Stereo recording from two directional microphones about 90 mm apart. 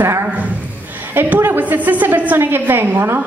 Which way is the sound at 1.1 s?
20° right (ahead or behind).